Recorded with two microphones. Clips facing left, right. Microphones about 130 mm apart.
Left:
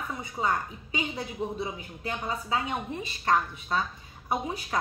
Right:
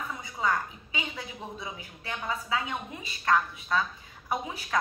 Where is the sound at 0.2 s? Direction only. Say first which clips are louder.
Even; 30° left (ahead or behind).